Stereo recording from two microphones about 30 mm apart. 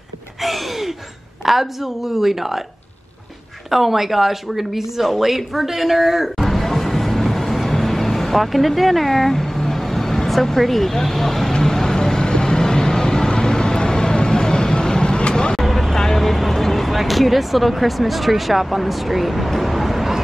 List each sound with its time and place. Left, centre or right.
0.4 s a sound: centre
1.4 s speech: centre
3.7 s speech: centre
6.2 s vehicle: centre; by 15.5 s left
15.6 s vehicle: centre